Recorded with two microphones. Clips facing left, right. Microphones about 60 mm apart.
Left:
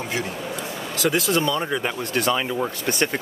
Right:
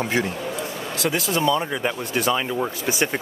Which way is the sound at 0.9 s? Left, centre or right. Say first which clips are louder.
Left 2 dB; centre.